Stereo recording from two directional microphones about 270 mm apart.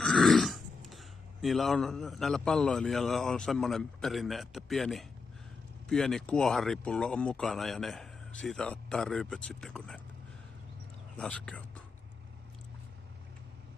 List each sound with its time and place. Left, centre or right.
0.0 s speech: centre
11.1 s speech: centre